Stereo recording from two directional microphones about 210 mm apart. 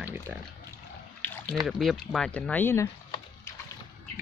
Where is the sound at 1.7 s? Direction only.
Centre (ahead or behind).